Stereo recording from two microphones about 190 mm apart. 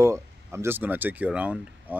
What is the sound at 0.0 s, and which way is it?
Speech, 15° right (ahead or behind).